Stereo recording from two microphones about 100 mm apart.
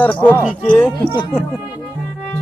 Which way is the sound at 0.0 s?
15° left (ahead or behind).